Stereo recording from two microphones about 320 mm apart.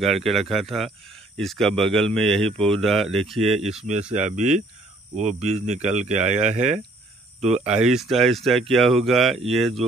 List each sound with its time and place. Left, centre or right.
0.0 s speech: centre
5.1 s speech: right
7.6 s speech: centre